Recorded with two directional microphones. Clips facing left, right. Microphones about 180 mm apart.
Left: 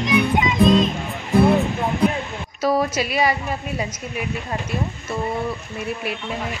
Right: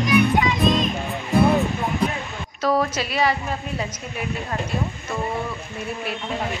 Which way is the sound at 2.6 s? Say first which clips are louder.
Left 1 dB; 10° left (ahead or behind).